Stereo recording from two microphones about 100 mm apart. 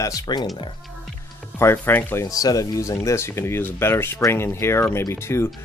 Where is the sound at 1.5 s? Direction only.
25° left (ahead or behind).